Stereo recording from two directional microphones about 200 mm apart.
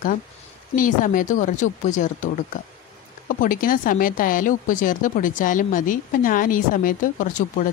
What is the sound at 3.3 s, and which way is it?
Speech, 45° left (ahead or behind).